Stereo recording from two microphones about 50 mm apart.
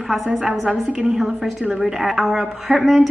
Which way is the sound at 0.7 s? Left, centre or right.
Centre.